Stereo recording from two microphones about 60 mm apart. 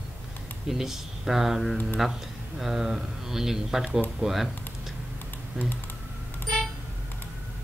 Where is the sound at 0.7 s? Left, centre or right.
Centre.